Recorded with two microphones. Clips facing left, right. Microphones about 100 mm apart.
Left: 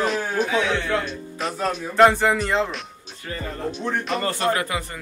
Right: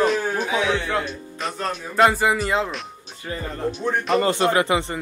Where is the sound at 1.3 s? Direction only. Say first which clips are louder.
Left 2 dB; centre (ahead or behind).